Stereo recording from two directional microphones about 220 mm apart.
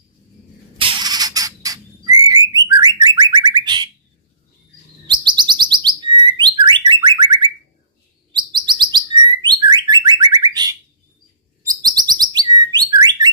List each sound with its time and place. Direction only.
0.7 s bird: 20° right (ahead or behind)
5.2 s chirp: 20° right (ahead or behind)
5.9 s bird: 20° right (ahead or behind)
8.5 s bird: 20° right (ahead or behind)